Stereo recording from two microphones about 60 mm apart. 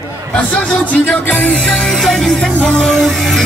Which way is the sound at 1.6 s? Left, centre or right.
Centre.